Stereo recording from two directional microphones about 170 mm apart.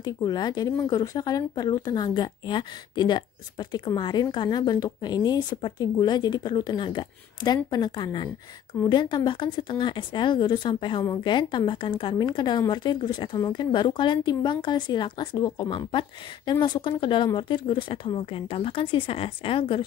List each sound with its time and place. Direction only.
0.0 s speech: 25° left (ahead or behind)